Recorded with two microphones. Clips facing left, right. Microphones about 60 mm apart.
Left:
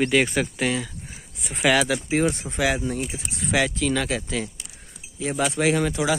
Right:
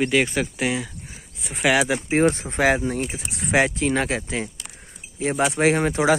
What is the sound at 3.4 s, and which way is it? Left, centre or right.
Speech, right.